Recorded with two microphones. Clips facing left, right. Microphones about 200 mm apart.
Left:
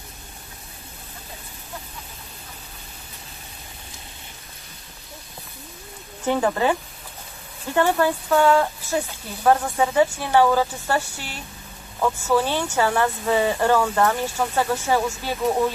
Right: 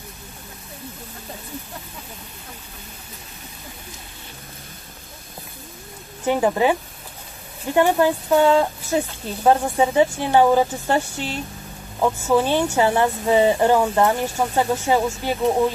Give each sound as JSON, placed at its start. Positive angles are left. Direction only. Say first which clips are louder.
{"t": 6.2, "sound": "speech", "louder": "right 2 dB", "side_deg": -15}